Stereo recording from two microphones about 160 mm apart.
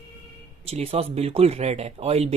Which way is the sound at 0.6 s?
40° right (ahead or behind).